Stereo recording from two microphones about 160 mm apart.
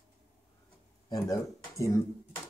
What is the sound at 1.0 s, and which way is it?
Speech, 20° left (ahead or behind).